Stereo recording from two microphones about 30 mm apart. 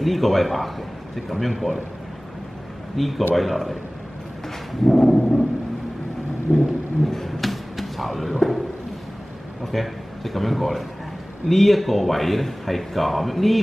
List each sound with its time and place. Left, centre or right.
0.0 s speech: centre
3.0 s speech: centre
4.8 s a sound: centre
6.5 s vehicle: left
7.1 s a sound: centre
8.3 s speech: centre
9.7 s a man's voice: centre